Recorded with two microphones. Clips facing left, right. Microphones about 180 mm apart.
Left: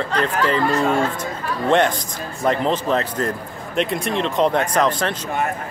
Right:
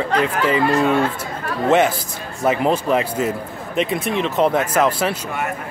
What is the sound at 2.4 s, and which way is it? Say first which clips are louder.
Speech: right 2 dB; 10° right (ahead or behind).